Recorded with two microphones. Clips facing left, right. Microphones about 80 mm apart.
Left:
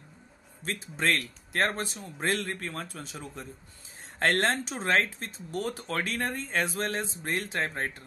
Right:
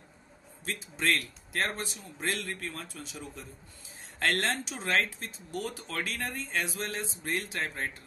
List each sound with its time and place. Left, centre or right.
0.7 s speech: left